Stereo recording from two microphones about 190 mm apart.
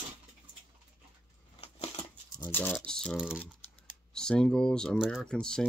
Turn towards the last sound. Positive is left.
turn(degrees=5)  # may be behind; listen again after turning